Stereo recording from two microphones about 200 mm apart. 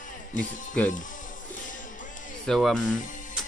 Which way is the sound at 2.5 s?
Centre (ahead or behind).